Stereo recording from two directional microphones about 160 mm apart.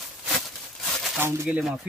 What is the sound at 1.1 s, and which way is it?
Speech, 15° right (ahead or behind).